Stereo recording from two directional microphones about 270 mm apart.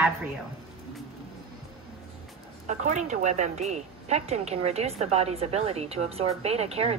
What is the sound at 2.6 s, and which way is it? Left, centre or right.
A woman's voice, right.